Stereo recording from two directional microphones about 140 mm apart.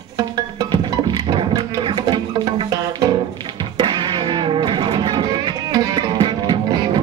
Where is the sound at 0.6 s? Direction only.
35° right (ahead or behind).